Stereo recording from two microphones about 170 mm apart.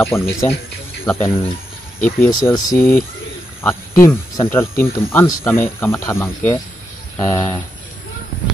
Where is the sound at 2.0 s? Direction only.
10° left (ahead or behind).